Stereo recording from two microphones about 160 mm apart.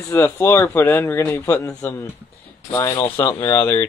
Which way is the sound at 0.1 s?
15° left (ahead or behind).